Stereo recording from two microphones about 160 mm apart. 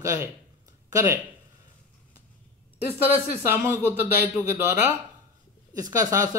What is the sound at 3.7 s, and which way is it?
Speech, 15° right (ahead or behind).